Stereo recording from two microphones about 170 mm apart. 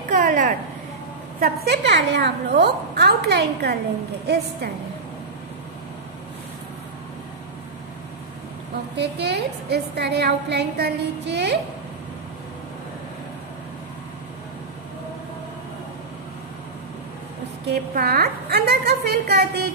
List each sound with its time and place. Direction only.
0.1 s a sound: 50° right (ahead or behind)
1.4 s a woman's voice: 70° right (ahead or behind)
8.9 s a woman's voice: 75° right (ahead or behind)
17.6 s a woman's voice: 65° right (ahead or behind)